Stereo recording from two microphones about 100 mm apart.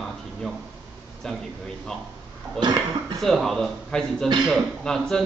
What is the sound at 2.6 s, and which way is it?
Speech, 50° right (ahead or behind).